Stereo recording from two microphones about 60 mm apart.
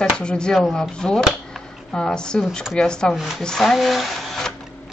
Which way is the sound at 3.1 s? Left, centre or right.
Centre.